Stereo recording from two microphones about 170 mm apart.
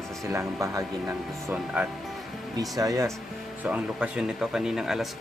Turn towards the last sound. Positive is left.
turn(degrees=0)  # may be behind; listen again after turning